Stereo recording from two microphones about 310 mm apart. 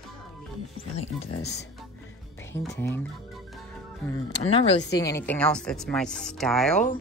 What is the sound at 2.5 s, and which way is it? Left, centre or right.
Speech, centre.